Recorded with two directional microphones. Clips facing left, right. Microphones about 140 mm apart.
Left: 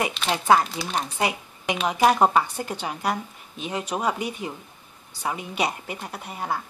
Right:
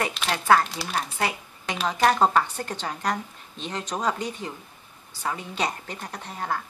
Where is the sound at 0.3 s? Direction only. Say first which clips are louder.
Left 1 dB; 15° left (ahead or behind).